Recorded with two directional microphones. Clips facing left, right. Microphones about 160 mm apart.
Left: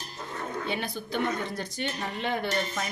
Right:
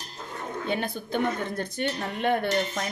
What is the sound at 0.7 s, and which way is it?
Speech, 50° right (ahead or behind).